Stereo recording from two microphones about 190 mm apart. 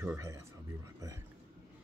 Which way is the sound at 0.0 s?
15° right (ahead or behind).